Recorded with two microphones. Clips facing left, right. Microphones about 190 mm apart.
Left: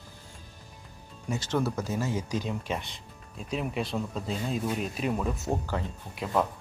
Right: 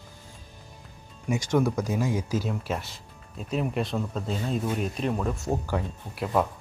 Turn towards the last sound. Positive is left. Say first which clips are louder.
# right 2 dB
turn(degrees=-10)  # may be behind; listen again after turning